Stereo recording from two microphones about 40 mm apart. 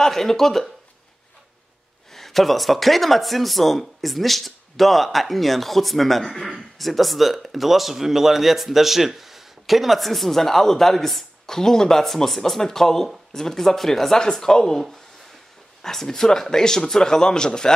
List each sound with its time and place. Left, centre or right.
0.0 s speech: centre
2.1 s speech: centre
15.8 s speech: centre